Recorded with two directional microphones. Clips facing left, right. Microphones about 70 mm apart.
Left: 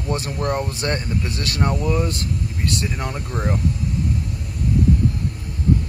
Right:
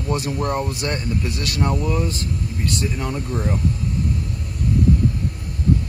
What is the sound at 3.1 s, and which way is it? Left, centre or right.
Speech, left.